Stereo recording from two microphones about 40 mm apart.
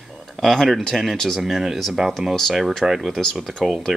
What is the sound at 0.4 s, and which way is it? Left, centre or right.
Speech, centre.